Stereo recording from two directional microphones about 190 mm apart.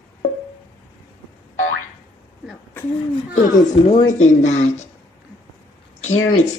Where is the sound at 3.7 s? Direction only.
25° left (ahead or behind).